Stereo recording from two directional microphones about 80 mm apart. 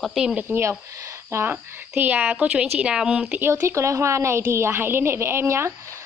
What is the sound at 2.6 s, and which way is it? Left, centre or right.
Speech, centre.